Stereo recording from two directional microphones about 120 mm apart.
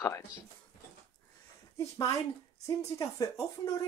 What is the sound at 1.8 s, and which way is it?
Speech, 25° left (ahead or behind).